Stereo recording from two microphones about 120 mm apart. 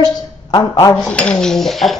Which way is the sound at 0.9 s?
10° left (ahead or behind).